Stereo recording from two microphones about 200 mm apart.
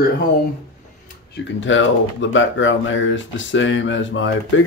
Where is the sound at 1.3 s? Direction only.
70° left (ahead or behind).